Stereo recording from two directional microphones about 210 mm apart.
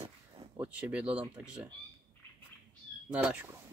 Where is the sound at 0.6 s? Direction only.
5° right (ahead or behind).